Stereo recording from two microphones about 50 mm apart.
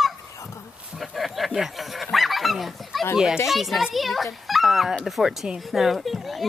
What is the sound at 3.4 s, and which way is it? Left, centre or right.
A woman's voice, centre.